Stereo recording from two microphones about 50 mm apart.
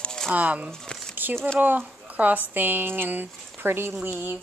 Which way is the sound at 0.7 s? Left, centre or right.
Centre.